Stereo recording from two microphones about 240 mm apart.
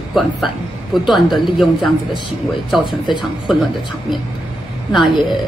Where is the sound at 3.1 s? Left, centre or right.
Centre.